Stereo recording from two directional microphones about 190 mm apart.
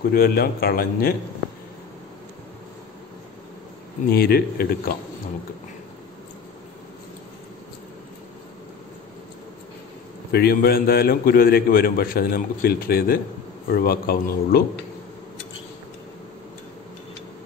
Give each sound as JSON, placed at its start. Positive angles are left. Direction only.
{"t": 0.1, "sound": "a man's voice", "side_deg": 55}
{"t": 4.1, "sound": "a man's voice", "side_deg": 55}
{"t": 10.3, "sound": "a man's voice", "side_deg": 55}